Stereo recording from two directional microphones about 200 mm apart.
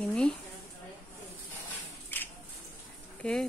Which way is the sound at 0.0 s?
5° left (ahead or behind).